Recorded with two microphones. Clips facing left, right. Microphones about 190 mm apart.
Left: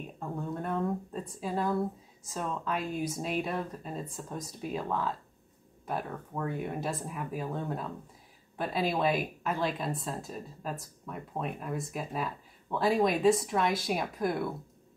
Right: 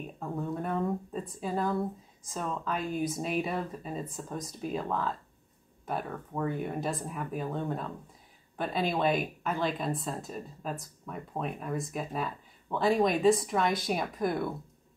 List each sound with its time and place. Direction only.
0.0 s speech: centre (ahead or behind)